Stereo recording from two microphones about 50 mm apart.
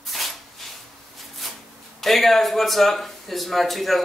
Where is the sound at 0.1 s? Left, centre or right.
Centre.